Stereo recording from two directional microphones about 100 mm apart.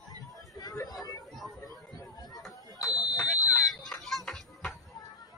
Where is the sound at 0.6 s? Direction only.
40° left (ahead or behind).